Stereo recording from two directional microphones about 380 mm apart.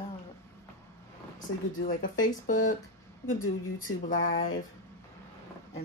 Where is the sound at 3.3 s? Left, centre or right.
Left.